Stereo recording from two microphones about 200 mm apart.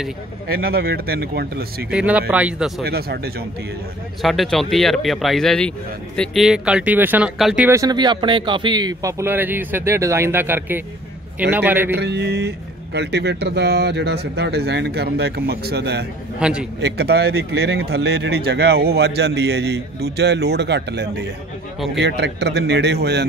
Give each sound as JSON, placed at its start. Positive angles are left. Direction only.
{"t": 0.5, "sound": "speech", "side_deg": -50}
{"t": 1.9, "sound": "speech", "side_deg": -5}
{"t": 2.8, "sound": "speech", "side_deg": -50}
{"t": 4.2, "sound": "speech", "side_deg": 0}
{"t": 12.0, "sound": "speech", "side_deg": -60}
{"t": 16.3, "sound": "speech", "side_deg": -5}
{"t": 16.8, "sound": "speech", "side_deg": -55}
{"t": 21.7, "sound": "speech", "side_deg": 0}
{"t": 22.0, "sound": "speech", "side_deg": -55}